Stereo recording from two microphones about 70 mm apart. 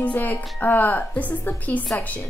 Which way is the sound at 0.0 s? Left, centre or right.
Left.